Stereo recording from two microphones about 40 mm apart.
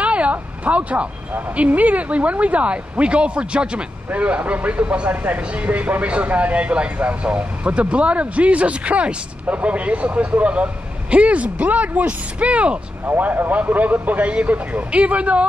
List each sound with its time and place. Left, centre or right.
0.0 s a sound: right
1.6 s speech: right
5.1 s speech: right
5.5 s speech: right
13.0 s speech: right